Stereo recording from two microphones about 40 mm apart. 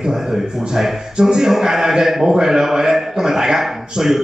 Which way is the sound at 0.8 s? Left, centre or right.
Centre.